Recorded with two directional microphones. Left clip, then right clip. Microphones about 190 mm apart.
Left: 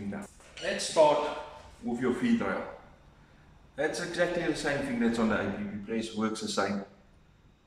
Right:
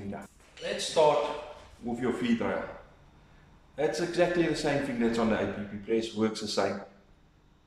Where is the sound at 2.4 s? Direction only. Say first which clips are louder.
Right 1 dB; centre (ahead or behind).